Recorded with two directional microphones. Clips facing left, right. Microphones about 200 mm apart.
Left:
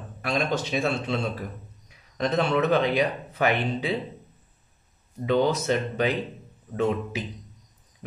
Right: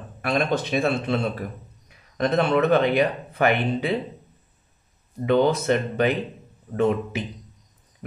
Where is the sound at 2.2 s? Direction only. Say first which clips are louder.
Right 3 dB; 55° right (ahead or behind).